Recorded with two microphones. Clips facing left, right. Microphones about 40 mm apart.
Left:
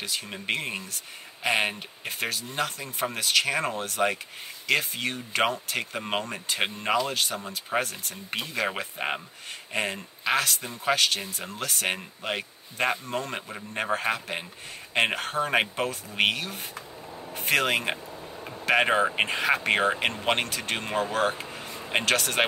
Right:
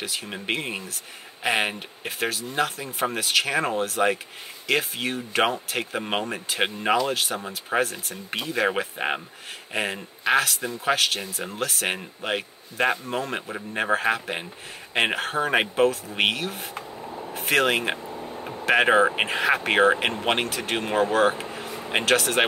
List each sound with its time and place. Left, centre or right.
0.0 s speech: centre
16.7 s a sound: right
17.3 s speech: centre
18.1 s music: right
18.7 s speech: centre
21.4 s a sound: centre
21.8 s speech: centre